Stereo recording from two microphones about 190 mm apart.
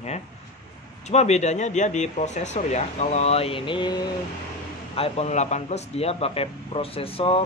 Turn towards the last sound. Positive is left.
turn(degrees=30)  # may be behind; listen again after turning